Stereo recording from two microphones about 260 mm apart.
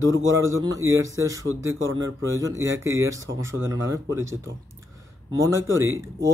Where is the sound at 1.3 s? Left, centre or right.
Centre.